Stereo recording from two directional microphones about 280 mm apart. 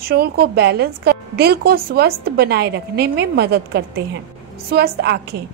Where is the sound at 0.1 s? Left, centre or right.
Right.